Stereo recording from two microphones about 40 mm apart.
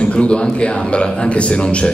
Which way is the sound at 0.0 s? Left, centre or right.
Left.